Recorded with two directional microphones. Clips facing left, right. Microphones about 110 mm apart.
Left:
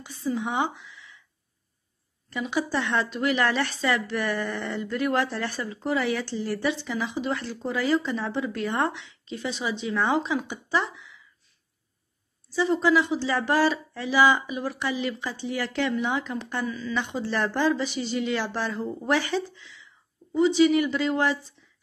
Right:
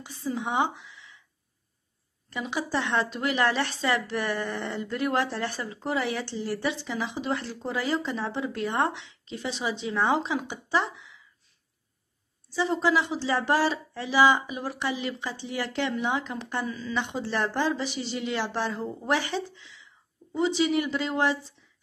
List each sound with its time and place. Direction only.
0.0 s speech: 25° right (ahead or behind)
2.2 s speech: 25° right (ahead or behind)
12.5 s speech: 25° right (ahead or behind)